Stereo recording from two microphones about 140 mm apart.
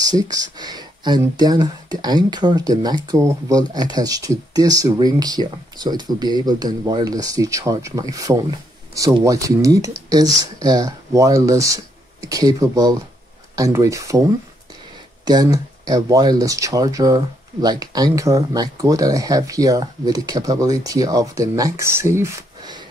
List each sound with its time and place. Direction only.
0.0 s speech: 25° right (ahead or behind)
15.2 s speech: 25° right (ahead or behind)